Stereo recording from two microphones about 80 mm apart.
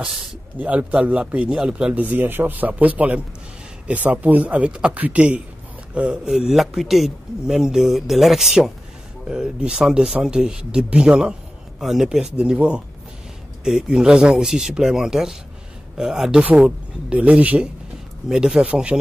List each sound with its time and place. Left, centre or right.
0.6 s speech: centre
2.0 s a man's voice: right